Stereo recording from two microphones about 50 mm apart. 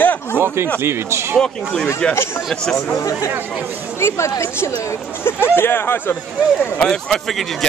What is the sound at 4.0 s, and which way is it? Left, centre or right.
Speech, left.